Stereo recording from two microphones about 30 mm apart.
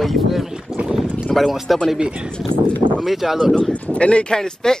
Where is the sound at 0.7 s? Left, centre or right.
Right.